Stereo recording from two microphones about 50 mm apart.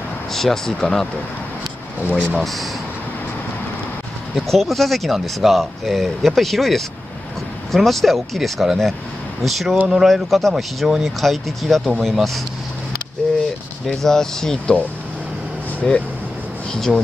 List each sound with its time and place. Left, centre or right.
0.3 s speech: centre
2.3 s speech: centre
4.4 s speech: centre
10.8 s speech: centre
11.1 s speech: centre
13.8 s speech: centre
15.9 s speech: centre